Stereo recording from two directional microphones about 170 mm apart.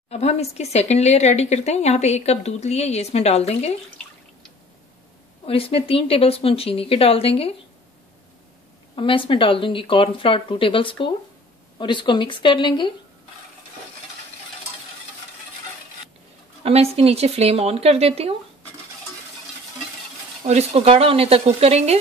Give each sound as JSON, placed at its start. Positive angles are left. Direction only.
{"t": 0.1, "sound": "speech", "side_deg": 40}
{"t": 5.5, "sound": "speech", "side_deg": 35}
{"t": 8.9, "sound": "speech", "side_deg": 30}
{"t": 16.6, "sound": "speech", "side_deg": -35}
{"t": 20.4, "sound": "speech", "side_deg": -40}